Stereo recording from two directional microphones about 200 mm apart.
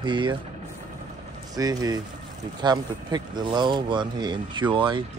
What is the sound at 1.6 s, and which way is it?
Speech, 20° right (ahead or behind).